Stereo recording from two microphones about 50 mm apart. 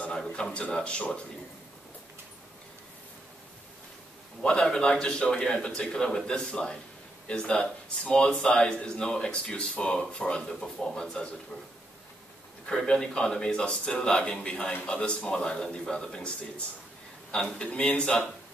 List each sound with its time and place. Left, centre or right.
0.0 s speech: left
4.4 s a man's voice: centre
12.6 s a man's voice: centre